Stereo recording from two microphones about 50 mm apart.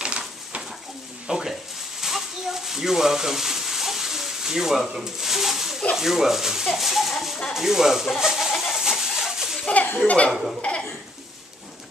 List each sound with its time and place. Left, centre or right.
1.2 s a sound: centre
5.9 s speech: centre
7.5 s bird: centre
10.0 s speech: left